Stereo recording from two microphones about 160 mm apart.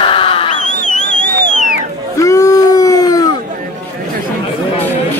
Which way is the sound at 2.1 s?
20° left (ahead or behind).